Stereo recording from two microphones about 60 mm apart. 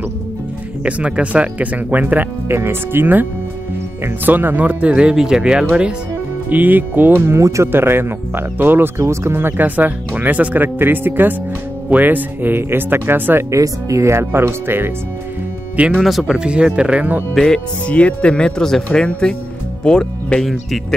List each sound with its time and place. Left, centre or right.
0.8 s speech: right
2.4 s speech: right
4.3 s speech: right; by 5.9 s centre
6.5 s speech: right
7.4 s speech: right
7.7 s speech: right
9.0 s speech: right
9.8 s speech: right
13.5 s speech: right
16.0 s speech: centre
16.3 s speech: centre
17.4 s speech: centre